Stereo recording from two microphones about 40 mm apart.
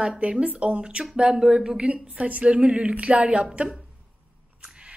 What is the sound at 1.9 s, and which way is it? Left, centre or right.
A woman's voice, right.